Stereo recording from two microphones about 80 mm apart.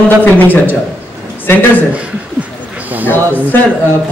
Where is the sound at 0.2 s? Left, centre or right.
Left.